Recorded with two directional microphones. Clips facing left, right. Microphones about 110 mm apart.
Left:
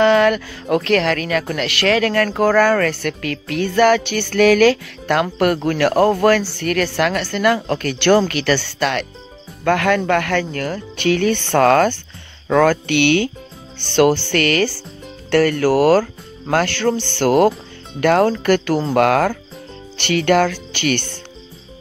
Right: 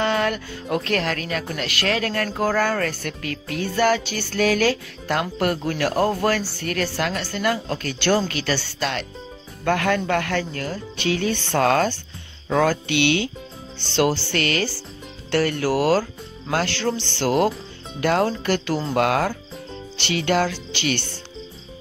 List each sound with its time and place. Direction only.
0.0 s speech: 90° left; by 9.0 s 65° left (ahead or behind)
9.7 s speech: 85° left; by 21.2 s 55° left (ahead or behind)